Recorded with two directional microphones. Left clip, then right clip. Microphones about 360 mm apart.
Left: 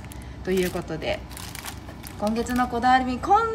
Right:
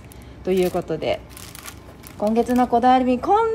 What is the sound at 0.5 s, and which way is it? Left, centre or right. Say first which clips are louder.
Speech: right 5 dB; centre.